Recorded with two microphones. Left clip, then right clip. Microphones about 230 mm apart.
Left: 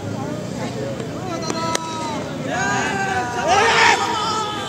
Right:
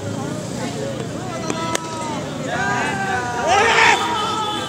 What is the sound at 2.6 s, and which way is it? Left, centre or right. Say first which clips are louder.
Vehicle: even; left.